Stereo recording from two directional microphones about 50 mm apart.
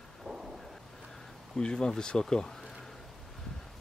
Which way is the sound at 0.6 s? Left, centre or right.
Centre.